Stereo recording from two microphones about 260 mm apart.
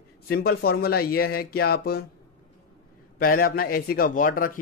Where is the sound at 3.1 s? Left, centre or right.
Left.